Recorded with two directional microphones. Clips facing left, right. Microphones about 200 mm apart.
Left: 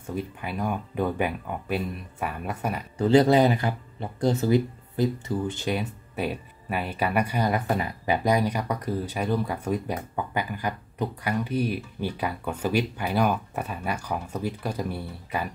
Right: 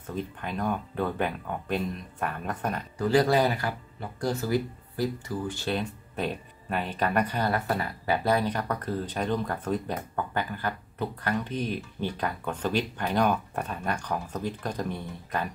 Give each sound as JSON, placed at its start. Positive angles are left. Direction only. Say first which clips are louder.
{"t": 0.0, "sound": "speech", "louder": "left 2 dB", "side_deg": 10}
{"t": 3.0, "sound": "speech", "louder": "left 4 dB", "side_deg": 20}
{"t": 5.8, "sound": "speech", "louder": "left 1 dB", "side_deg": 10}